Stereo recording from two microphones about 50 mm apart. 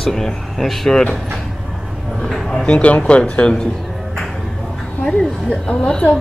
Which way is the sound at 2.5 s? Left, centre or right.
Centre.